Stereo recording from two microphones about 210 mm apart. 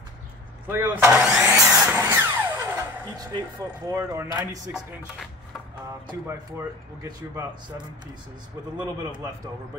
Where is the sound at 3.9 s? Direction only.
15° right (ahead or behind).